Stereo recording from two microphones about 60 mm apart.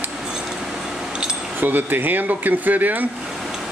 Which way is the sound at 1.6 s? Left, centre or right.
Right.